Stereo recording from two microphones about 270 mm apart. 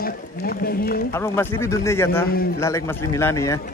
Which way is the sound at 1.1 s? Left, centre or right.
Centre.